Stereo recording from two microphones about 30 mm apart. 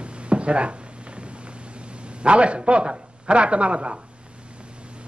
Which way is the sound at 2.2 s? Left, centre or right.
Right.